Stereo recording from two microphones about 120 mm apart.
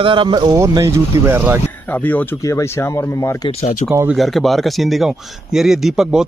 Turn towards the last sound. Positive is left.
turn(degrees=-5)  # may be behind; listen again after turning